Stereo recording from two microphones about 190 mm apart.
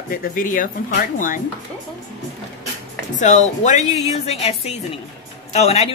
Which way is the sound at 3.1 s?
40° left (ahead or behind).